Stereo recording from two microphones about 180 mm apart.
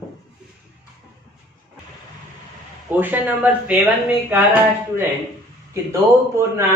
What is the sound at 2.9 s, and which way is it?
A man's voice, 10° right (ahead or behind).